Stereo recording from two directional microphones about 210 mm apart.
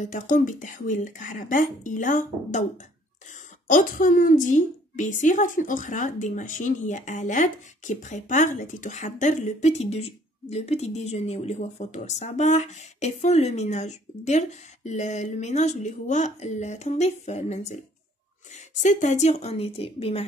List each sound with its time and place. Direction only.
0.0 s a woman's voice: 40° left (ahead or behind)
3.6 s a woman's voice: 40° left (ahead or behind)